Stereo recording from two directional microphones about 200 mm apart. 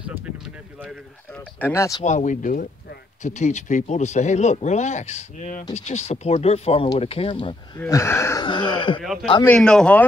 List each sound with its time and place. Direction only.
1.6 s speech: 15° left (ahead or behind)
2.0 s speech: 40° left (ahead or behind)
7.8 s speech: 15° left (ahead or behind)
9.0 s a man's voice: centre (ahead or behind)